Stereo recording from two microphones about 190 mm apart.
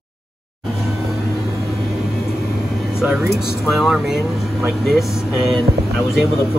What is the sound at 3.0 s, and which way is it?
Speech, 5° right (ahead or behind).